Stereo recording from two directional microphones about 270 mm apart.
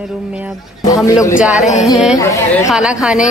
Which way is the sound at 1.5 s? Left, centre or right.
Left.